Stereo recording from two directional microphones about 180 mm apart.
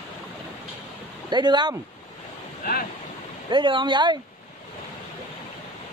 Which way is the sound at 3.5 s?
25° right (ahead or behind).